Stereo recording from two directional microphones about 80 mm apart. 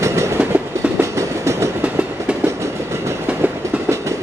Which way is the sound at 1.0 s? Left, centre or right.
Right.